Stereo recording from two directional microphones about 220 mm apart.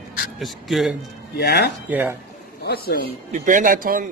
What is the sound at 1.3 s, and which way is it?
Speech, 45° left (ahead or behind).